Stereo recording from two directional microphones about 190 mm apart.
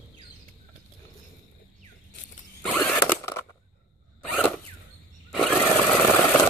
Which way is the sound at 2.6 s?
5° left (ahead or behind).